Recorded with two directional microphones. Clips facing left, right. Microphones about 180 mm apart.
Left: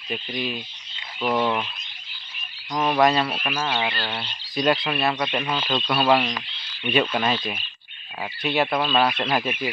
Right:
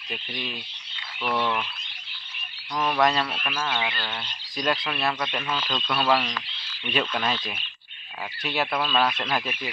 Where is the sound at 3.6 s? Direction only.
25° left (ahead or behind).